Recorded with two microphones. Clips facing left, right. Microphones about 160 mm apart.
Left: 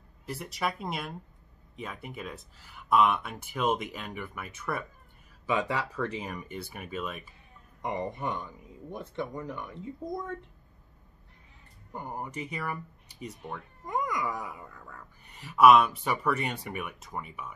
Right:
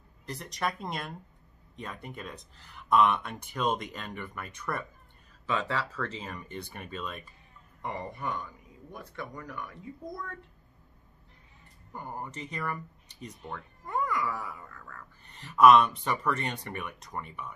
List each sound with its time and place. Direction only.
0.3 s speech: 5° left (ahead or behind)
7.8 s speech: 20° left (ahead or behind)
11.9 s speech: 15° left (ahead or behind)